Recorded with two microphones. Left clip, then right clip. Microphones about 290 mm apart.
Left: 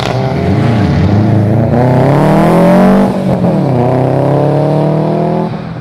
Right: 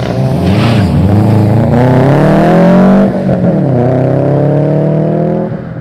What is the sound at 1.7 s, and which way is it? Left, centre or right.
Vehicle, centre.